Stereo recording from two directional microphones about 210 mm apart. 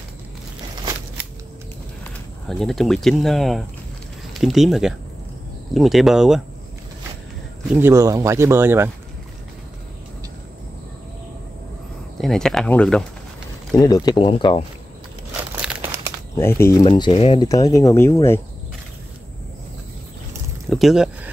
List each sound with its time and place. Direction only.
2.4 s speech: centre (ahead or behind)
7.7 s speech: 10° right (ahead or behind)
12.2 s speech: centre (ahead or behind)
13.7 s speech: 20° left (ahead or behind)
15.5 s crumpling: 5° right (ahead or behind)
16.3 s speech: 10° left (ahead or behind)
20.7 s a sound: centre (ahead or behind)